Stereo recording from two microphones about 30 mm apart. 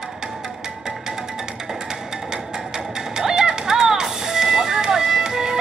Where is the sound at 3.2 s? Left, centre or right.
Centre.